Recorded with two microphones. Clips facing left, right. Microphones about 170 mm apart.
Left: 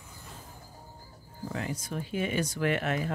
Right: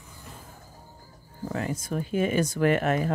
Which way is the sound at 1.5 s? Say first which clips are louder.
Right 5 dB; 50° right (ahead or behind).